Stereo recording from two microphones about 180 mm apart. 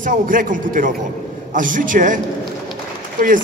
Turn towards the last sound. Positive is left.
turn(degrees=-45)  # may be behind; listen again after turning